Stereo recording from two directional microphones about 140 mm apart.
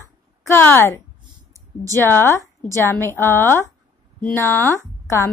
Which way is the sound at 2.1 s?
15° left (ahead or behind).